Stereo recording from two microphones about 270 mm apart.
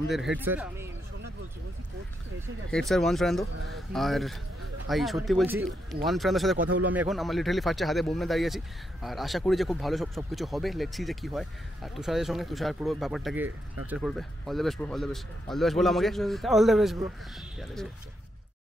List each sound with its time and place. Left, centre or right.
0.4 s speech: centre
2.7 s speech: centre